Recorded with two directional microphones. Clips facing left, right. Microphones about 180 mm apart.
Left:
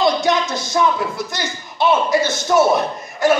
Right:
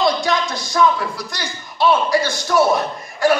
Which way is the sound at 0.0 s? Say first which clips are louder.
Left 2 dB; 20° left (ahead or behind).